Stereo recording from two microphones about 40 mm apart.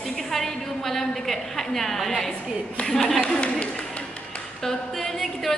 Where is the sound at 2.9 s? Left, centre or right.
Centre.